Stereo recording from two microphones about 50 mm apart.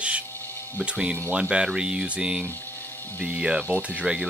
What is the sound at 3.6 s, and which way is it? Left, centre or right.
Speech, right.